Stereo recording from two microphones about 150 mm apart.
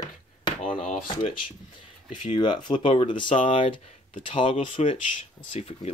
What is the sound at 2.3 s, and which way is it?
Speech, 30° left (ahead or behind).